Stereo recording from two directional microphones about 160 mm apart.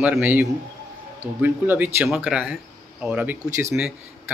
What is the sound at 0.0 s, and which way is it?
Speech, 10° right (ahead or behind).